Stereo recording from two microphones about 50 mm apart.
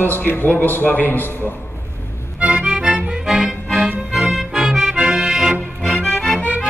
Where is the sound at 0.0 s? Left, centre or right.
Left.